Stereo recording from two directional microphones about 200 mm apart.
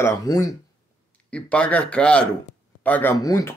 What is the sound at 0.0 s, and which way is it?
Speech, 15° left (ahead or behind).